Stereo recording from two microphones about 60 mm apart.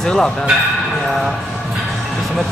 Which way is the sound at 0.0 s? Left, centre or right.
Centre.